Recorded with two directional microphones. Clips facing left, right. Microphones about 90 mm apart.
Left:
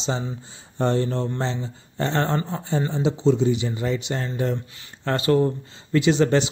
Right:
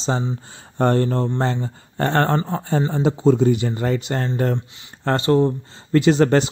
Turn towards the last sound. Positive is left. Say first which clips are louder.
# right 3 dB
turn(degrees=-45)  # may be behind; listen again after turning